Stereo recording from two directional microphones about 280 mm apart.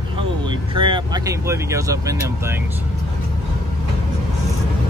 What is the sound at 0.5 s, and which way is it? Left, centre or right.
Speech, centre.